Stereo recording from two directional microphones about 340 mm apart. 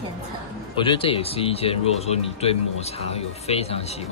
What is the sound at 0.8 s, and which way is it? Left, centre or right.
Speech, centre.